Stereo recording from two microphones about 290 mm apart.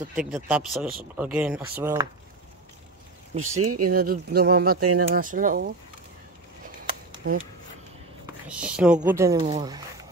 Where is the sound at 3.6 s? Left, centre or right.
Right.